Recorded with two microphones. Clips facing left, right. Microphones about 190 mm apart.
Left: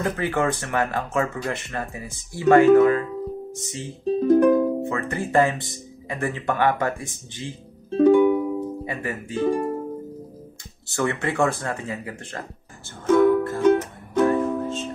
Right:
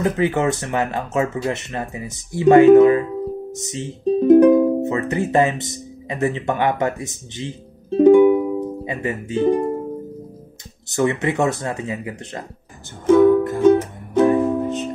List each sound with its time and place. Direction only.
0.0 s speech: 20° right (ahead or behind)
8.0 s music: 15° right (ahead or behind)
10.9 s speech: 20° right (ahead or behind)
13.0 s music: 15° right (ahead or behind)